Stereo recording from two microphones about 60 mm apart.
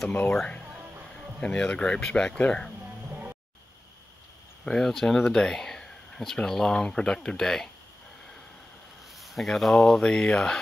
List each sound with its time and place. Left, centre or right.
0.1 s speech: left
1.4 s speech: centre
4.6 s speech: centre
9.2 s speech: centre